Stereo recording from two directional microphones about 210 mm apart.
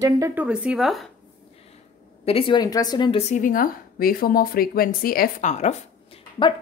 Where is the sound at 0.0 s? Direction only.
10° right (ahead or behind).